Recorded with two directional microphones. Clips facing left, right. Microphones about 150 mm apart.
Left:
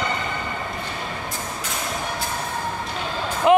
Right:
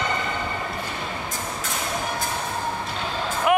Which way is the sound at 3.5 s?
25° left (ahead or behind).